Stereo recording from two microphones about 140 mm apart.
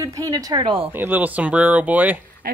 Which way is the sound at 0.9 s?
15° right (ahead or behind).